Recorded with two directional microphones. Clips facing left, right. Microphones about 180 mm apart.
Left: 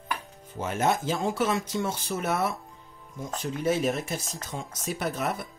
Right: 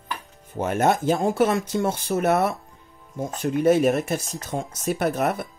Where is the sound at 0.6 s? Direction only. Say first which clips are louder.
Right 5 dB; 60° right (ahead or behind).